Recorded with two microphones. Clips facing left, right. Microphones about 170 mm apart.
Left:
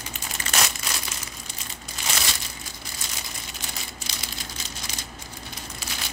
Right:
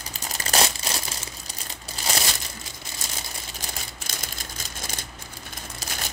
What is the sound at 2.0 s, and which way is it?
Crumpling, 40° right (ahead or behind).